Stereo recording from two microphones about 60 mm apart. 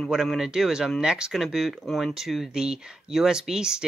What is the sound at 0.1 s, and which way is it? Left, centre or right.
Speech, centre.